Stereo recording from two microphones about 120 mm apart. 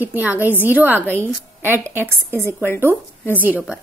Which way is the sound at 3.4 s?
15° right (ahead or behind).